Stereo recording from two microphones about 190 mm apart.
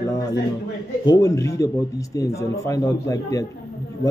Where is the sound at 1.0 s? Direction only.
20° left (ahead or behind).